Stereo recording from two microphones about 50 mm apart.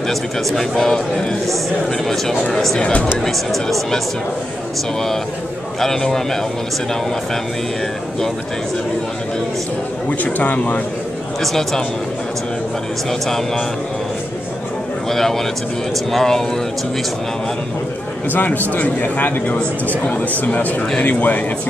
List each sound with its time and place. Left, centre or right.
0.1 s a man's voice: centre
2.8 s speech: left
3.2 s speech: centre
5.8 s a man's voice: centre
10.0 s a man's voice: left
11.4 s speech: centre
15.0 s a man's voice: centre
18.3 s a man's voice: left